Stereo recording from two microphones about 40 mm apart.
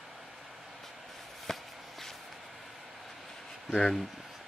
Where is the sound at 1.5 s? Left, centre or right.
Centre.